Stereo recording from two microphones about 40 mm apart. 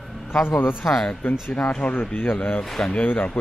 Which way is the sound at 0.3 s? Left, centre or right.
Left.